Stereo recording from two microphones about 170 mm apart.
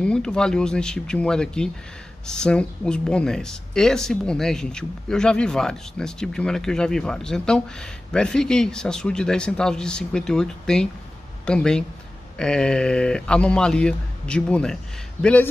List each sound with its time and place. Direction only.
0.0 s speech: 5° left (ahead or behind)